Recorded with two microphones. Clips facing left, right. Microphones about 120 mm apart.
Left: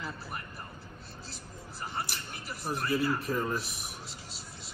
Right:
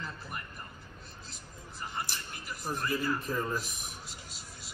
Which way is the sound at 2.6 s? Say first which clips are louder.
Left 3 dB; 5° left (ahead or behind).